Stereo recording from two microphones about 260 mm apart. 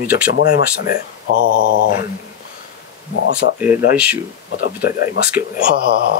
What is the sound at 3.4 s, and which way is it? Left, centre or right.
Speech, left.